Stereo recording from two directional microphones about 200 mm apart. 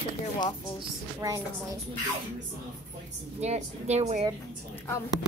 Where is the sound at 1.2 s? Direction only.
15° right (ahead or behind).